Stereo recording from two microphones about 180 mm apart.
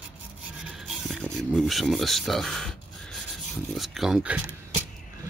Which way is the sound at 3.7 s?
Centre (ahead or behind).